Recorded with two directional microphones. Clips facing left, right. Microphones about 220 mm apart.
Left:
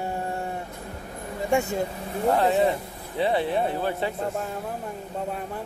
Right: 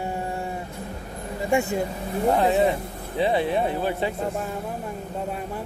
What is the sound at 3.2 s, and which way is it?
Speech, 15° right (ahead or behind).